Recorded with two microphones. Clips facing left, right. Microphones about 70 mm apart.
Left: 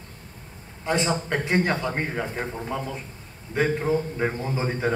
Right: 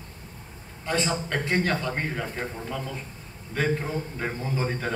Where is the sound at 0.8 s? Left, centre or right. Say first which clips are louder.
Left 3 dB; centre.